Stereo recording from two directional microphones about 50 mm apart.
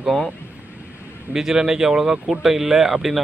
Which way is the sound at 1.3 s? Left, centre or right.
Centre.